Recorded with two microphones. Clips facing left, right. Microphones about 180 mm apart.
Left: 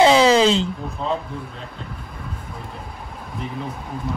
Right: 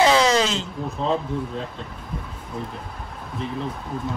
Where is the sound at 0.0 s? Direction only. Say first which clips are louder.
Left 4 dB; 25° left (ahead or behind).